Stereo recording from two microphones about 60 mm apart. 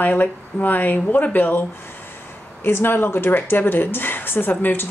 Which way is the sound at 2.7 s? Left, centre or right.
Left.